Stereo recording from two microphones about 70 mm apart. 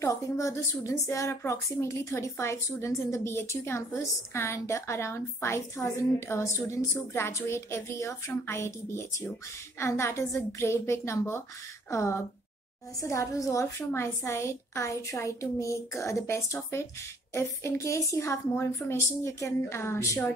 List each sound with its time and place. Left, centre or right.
0.0 s a woman's voice: left